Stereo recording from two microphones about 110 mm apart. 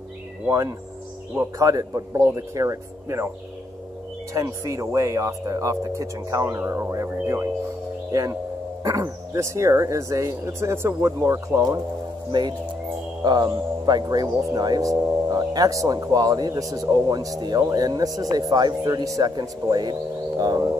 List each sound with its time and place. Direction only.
0.5 s speech: 30° right (ahead or behind)
4.3 s speech: 30° right (ahead or behind)
12.3 s speech: 40° right (ahead or behind)